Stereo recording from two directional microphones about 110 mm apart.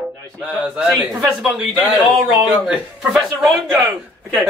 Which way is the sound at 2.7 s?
Centre (ahead or behind).